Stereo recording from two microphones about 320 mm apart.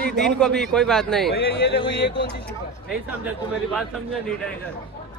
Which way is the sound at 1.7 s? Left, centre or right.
Left.